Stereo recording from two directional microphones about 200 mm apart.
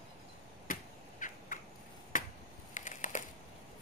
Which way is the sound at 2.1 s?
40° left (ahead or behind).